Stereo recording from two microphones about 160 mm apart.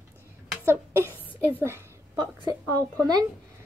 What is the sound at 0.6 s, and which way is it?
A woman's voice, 15° right (ahead or behind).